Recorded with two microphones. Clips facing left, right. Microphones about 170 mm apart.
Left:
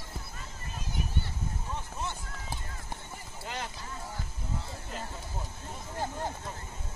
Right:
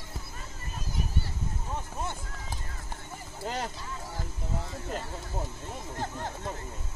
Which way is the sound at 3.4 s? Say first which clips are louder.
Right 5 dB; 40° right (ahead or behind).